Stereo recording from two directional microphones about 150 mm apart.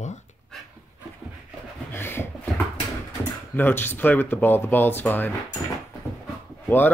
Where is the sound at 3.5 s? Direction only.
15° left (ahead or behind).